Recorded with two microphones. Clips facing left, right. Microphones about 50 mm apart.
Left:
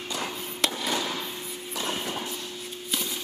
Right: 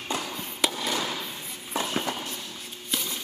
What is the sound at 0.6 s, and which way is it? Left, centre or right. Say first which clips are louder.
Fireworks: even; centre.